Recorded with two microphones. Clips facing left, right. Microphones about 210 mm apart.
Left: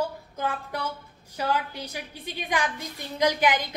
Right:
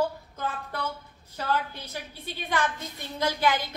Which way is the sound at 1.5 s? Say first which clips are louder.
Even; 15° left (ahead or behind).